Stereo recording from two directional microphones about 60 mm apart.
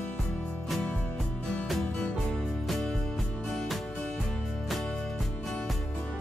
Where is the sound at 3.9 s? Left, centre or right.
Centre.